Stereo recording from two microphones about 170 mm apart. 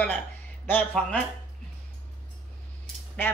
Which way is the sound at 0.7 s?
10° left (ahead or behind).